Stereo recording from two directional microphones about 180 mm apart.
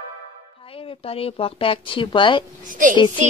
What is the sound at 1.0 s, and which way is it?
A woman's voice, 30° left (ahead or behind).